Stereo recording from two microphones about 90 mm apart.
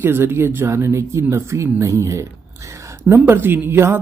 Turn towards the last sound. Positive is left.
turn(degrees=-25)  # may be behind; listen again after turning